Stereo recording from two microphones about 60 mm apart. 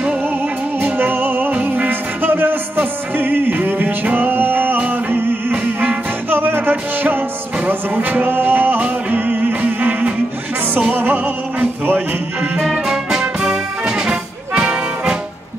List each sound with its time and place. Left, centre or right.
0.7 s music: right
1.5 s music: right
12.5 s music: centre